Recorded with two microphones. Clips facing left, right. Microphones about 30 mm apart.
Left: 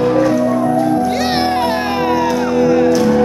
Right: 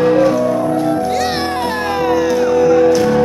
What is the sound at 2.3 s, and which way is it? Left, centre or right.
Music, centre.